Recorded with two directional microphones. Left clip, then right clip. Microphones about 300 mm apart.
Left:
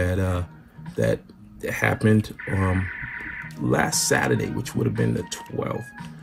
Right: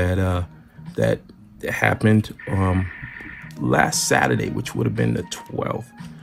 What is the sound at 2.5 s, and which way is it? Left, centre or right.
Speech, centre.